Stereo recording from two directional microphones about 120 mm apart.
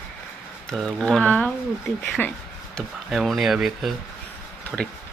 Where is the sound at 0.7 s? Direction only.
5° left (ahead or behind).